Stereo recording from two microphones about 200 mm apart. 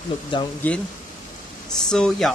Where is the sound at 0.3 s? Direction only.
25° left (ahead or behind).